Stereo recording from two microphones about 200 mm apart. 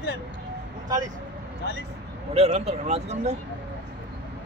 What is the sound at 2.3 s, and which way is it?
Speech, 30° right (ahead or behind).